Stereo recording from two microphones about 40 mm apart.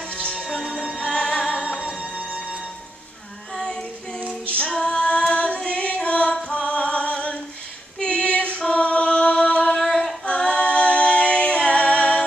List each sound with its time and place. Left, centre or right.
0.1 s music: left
3.5 s child singing: centre
4.6 s female singing: left
5.7 s music: left
8.0 s female singing: left
8.5 s a capella: left
9.7 s female singing: centre
10.2 s a capella: left